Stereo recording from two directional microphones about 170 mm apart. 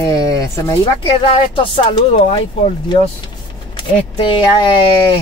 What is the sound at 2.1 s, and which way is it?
Speech, 40° left (ahead or behind).